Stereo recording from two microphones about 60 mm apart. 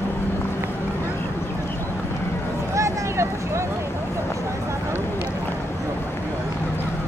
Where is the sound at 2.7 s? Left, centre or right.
Right.